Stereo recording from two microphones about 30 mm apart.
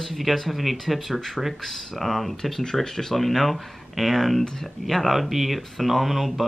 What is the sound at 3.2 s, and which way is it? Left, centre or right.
Speech, centre.